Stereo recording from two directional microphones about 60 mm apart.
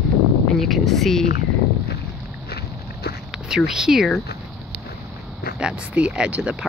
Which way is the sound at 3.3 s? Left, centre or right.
Centre.